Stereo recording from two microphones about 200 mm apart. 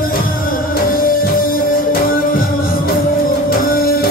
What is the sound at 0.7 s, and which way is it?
Music, 45° left (ahead or behind).